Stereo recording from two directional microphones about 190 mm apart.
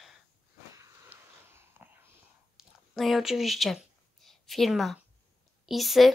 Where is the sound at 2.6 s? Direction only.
Centre (ahead or behind).